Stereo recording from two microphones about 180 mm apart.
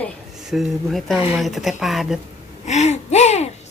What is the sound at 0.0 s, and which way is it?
Speech, centre (ahead or behind).